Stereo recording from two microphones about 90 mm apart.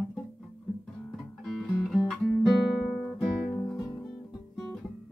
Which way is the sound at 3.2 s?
10° left (ahead or behind).